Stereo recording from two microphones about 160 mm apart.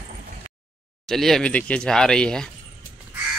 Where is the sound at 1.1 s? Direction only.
Centre (ahead or behind).